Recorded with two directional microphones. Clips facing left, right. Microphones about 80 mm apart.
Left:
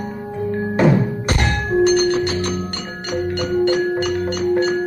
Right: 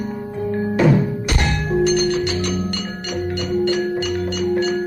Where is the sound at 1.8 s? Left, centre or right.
Left.